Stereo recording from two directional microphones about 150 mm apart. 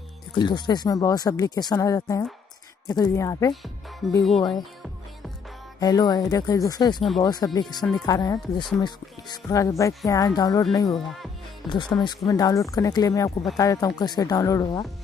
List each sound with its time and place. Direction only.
0.3 s speech: 30° left (ahead or behind)
4.0 s speech: 5° right (ahead or behind)
4.4 s speech: 25° left (ahead or behind)
5.8 s speech: 25° left (ahead or behind)